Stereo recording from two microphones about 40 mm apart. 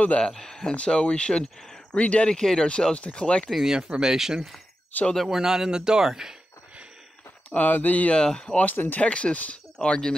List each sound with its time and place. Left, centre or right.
0.3 s speech: centre
0.7 s speech: left
2.2 s speech: centre
3.6 s a man's voice: centre
4.9 s speech: left
5.3 s a man's voice: centre
7.5 s speech: left
8.1 s speech: left
8.7 s speech: left
9.0 s speech: left
9.8 s speech: centre